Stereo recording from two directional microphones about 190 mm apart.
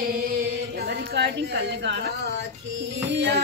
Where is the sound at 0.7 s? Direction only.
55° right (ahead or behind).